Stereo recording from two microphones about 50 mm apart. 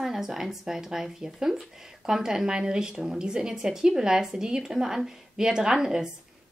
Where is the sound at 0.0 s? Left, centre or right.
Centre.